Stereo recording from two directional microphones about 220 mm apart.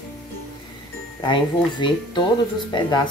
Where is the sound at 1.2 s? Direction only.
20° left (ahead or behind).